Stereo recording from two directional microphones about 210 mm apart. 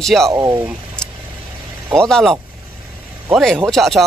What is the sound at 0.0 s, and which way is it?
Speech, centre (ahead or behind).